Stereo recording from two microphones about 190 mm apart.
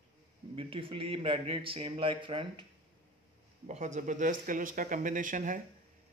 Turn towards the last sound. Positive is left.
turn(degrees=-45)  # may be behind; listen again after turning